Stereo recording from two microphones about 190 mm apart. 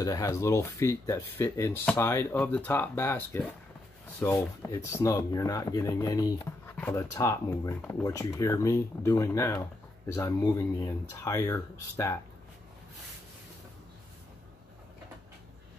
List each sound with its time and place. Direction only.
0.0 s speech: 15° left (ahead or behind)